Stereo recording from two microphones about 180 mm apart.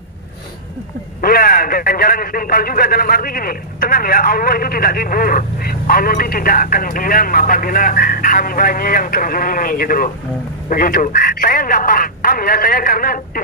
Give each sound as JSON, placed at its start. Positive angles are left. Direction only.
{"t": 1.2, "sound": "speech", "side_deg": 55}